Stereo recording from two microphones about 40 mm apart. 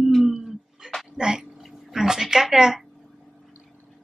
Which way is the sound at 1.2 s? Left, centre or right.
Centre.